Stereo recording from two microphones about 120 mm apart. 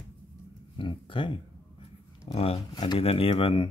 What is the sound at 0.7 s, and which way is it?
Speech, 45° left (ahead or behind).